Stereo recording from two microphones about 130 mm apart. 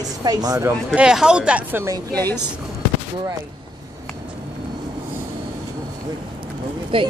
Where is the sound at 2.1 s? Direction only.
15° left (ahead or behind).